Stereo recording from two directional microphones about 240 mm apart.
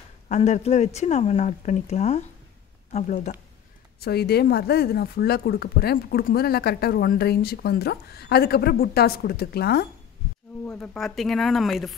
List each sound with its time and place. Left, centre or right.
0.3 s speech: left
4.0 s speech: left
10.6 s speech: centre